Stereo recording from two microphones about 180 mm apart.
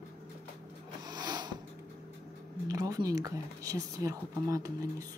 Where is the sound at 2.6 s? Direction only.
20° right (ahead or behind).